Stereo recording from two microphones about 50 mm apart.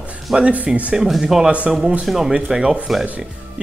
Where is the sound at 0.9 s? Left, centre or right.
Centre.